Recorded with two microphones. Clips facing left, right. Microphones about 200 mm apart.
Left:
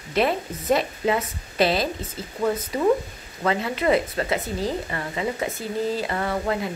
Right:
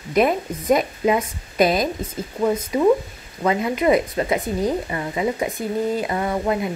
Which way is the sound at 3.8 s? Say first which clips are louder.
Right 3 dB; 15° right (ahead or behind).